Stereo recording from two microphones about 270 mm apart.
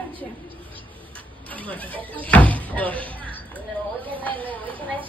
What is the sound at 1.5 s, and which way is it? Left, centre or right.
Speech, centre.